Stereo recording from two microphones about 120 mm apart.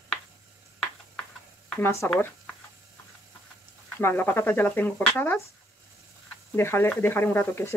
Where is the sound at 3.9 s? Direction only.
15° left (ahead or behind).